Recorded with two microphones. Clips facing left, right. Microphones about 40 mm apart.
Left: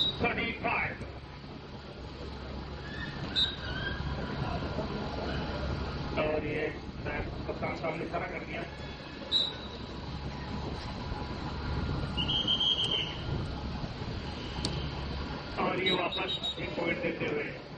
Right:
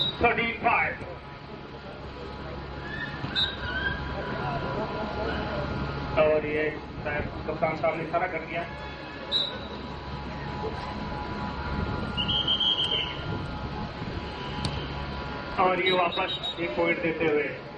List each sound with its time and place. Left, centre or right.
0.0 s speech: right
3.0 s vehicle: right
8.3 s a man's voice: centre
11.3 s music: right
15.5 s a man's voice: right